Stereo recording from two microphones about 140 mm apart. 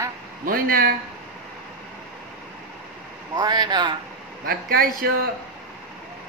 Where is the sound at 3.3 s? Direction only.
30° right (ahead or behind).